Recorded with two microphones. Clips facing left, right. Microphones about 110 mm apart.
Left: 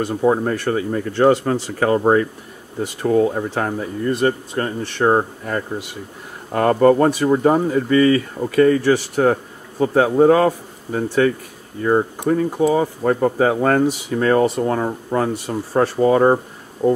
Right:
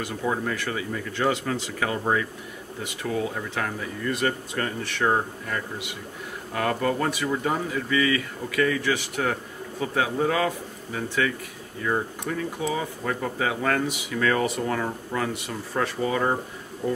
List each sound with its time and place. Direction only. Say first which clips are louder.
0.0 s speech: left 10 dB; 35° left (ahead or behind)